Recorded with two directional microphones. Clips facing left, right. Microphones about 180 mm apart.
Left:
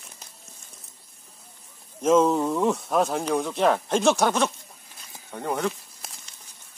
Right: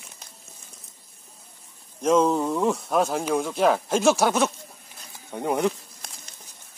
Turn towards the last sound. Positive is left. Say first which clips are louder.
# even
turn(degrees=5)  # may be behind; listen again after turning